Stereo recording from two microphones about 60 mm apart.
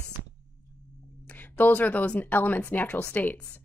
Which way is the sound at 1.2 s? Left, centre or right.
Left.